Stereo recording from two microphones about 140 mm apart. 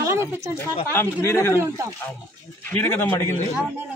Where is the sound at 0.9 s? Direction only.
20° left (ahead or behind).